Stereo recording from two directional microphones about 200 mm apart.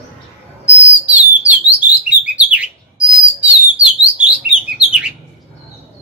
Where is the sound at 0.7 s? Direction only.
10° right (ahead or behind).